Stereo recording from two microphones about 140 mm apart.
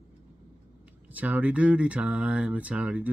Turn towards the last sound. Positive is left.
turn(degrees=-10)  # may be behind; listen again after turning